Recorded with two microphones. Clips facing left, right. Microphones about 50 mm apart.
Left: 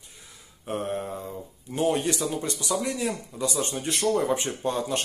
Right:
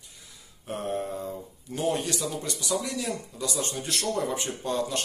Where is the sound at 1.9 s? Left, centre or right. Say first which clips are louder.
Left 3 dB; left.